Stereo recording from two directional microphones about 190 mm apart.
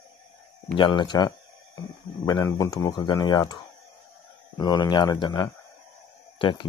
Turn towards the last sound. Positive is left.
turn(degrees=25)  # may be behind; listen again after turning